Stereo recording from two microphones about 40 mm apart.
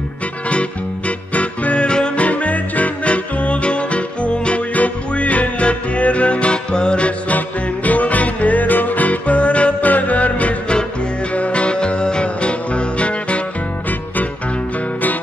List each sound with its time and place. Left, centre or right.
0.5 s music: left
2.2 s music: left
7.3 s music: left
9.8 s music: left